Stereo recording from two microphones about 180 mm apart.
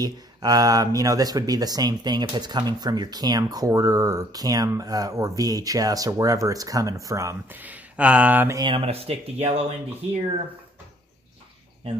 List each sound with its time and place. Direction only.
0.0 s speech: 20° right (ahead or behind)